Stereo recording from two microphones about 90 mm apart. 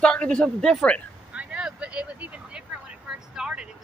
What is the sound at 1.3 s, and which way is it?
Vehicle, 10° right (ahead or behind).